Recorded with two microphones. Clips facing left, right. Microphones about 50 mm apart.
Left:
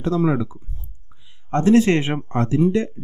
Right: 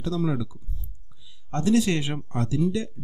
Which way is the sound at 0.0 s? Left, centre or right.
Left.